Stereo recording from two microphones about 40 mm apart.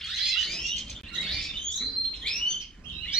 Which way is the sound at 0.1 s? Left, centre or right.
Centre.